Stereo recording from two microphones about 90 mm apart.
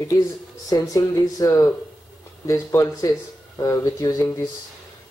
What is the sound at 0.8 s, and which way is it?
Speech, 40° left (ahead or behind).